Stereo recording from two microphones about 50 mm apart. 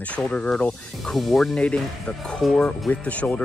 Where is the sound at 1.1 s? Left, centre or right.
Centre.